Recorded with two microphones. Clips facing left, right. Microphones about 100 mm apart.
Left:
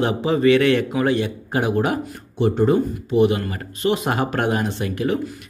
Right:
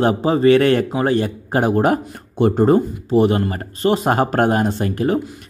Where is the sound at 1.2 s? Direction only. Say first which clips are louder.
Right 4 dB; 40° right (ahead or behind).